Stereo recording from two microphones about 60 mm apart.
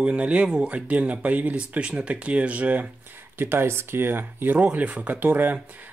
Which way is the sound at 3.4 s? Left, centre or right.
Right.